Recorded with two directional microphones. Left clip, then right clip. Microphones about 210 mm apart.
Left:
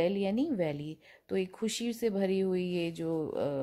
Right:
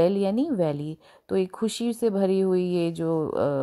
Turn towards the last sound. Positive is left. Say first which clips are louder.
# right 8 dB
turn(degrees=-20)  # may be behind; listen again after turning